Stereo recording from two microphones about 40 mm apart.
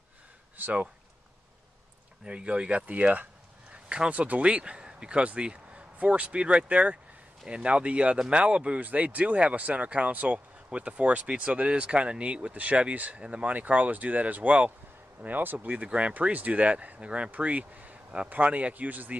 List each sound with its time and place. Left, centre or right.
0.6 s speech: right
2.2 s speech: right
3.7 s a sound: right
4.1 s speech: right
10.7 s speech: right
15.7 s speech: right